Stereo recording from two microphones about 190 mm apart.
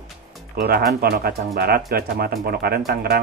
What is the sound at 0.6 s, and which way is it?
Speech, 55° right (ahead or behind).